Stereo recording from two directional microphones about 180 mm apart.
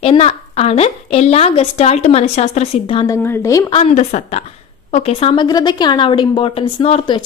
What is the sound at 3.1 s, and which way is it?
Speech, 15° left (ahead or behind).